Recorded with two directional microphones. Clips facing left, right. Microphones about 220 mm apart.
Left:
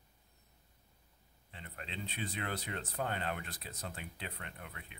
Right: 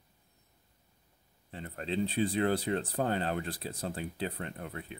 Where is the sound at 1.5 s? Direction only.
40° right (ahead or behind).